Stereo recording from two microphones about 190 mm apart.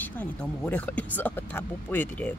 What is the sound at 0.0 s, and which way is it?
Speech, 10° left (ahead or behind).